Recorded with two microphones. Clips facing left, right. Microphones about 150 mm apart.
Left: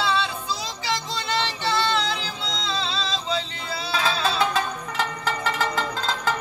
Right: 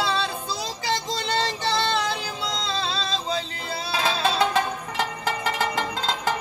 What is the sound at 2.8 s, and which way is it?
Music, 40° right (ahead or behind).